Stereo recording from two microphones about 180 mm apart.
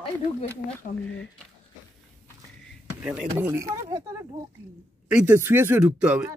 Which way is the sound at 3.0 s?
10° right (ahead or behind).